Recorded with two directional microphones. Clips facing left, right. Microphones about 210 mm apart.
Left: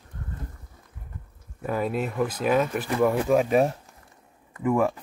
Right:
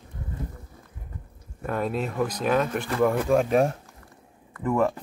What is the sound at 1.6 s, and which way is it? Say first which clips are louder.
Speech: left 1 dB; 5° left (ahead or behind).